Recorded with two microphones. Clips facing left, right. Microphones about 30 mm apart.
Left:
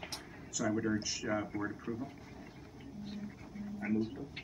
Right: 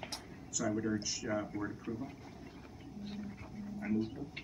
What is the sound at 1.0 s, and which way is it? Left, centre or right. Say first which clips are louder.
Speech: left 1 dB; centre.